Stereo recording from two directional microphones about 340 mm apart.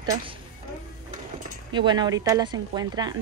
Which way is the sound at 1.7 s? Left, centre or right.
Centre.